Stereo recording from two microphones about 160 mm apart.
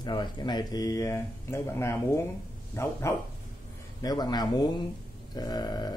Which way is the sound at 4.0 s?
25° left (ahead or behind).